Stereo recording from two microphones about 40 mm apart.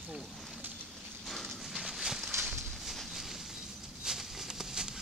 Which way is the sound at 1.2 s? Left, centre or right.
Centre.